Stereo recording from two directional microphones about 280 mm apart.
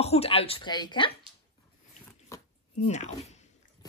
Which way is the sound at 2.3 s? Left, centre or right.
Left.